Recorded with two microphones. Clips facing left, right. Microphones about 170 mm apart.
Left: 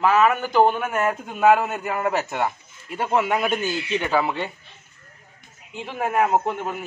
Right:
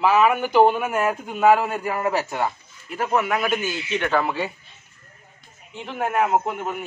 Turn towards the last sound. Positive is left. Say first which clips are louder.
# left 1 dB
turn(degrees=0)  # may be behind; listen again after turning